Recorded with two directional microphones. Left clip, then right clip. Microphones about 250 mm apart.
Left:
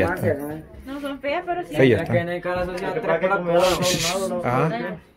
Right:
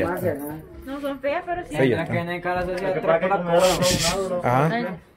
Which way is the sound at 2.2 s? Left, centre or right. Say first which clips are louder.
Even; centre.